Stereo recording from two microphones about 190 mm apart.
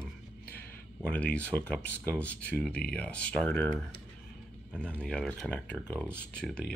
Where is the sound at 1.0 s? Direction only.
5° left (ahead or behind).